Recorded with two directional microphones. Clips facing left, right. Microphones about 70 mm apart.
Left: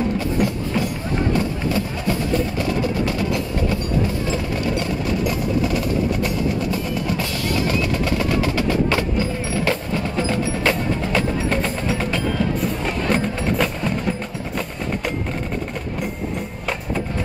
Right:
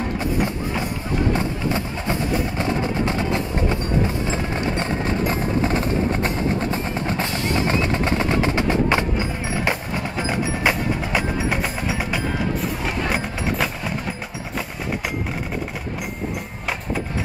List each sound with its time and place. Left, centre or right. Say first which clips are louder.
0.4 s music: left 2 dB; right
4.3 s wood block: left 1 dB; right; by 12.2 s centre
12.5 s music: left 2 dB; centre